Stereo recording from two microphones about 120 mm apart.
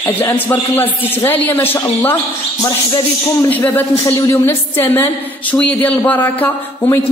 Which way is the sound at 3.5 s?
20° left (ahead or behind).